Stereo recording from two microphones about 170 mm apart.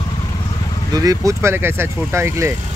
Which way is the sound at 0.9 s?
20° right (ahead or behind).